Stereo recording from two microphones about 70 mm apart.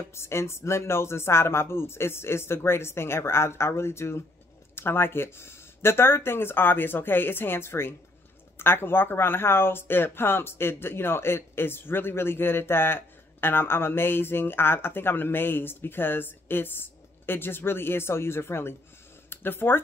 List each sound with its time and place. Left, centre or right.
0.1 s speech: left